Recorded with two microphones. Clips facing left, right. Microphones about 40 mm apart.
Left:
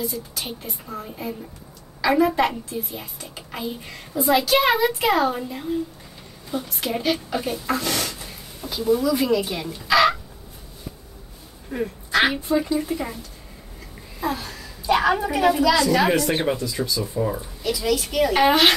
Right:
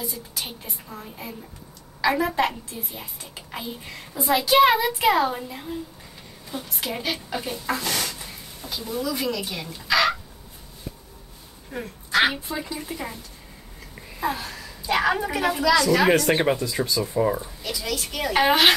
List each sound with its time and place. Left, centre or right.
0.0 s a woman's voice: centre
11.7 s a woman's voice: centre
14.2 s a woman's voice: centre
16.3 s speech: right
17.4 s a woman's voice: centre